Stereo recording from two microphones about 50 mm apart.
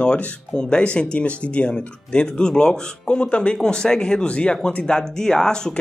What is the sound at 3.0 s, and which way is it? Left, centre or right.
Speech, left.